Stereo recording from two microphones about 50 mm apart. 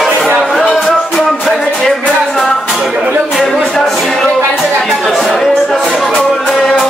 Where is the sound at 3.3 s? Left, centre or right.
Centre.